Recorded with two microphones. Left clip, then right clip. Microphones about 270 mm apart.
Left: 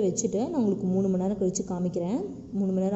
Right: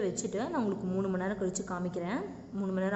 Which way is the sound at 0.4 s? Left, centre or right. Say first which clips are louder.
Left 5 dB; centre.